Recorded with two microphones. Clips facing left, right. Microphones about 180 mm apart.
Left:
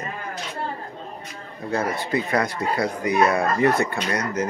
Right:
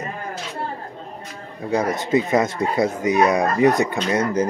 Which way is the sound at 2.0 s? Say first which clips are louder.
Right 5 dB; 20° right (ahead or behind).